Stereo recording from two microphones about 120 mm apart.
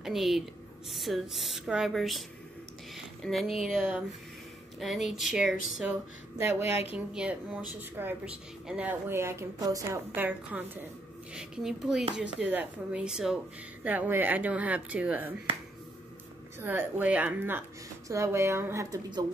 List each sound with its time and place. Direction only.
0.0 s a woman's voice: centre (ahead or behind)
3.3 s speech: centre (ahead or behind)
6.3 s a woman's voice: 20° right (ahead or behind)
6.7 s speech: 55° left (ahead or behind)
7.2 s speech: 10° right (ahead or behind)
9.1 s a woman's voice: 20° right (ahead or behind)
10.1 s speech: 15° right (ahead or behind)
13.8 s speech: 15° right (ahead or behind)
16.5 s a woman's voice: 15° right (ahead or behind)